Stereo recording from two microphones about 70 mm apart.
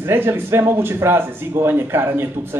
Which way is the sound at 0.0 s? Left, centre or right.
Right.